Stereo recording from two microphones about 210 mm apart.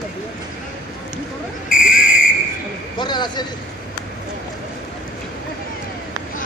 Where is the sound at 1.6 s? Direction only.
40° left (ahead or behind).